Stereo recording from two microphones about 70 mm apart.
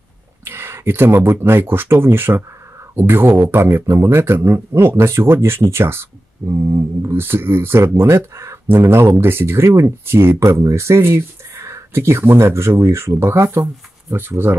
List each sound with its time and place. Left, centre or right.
0.5 s a man's voice: right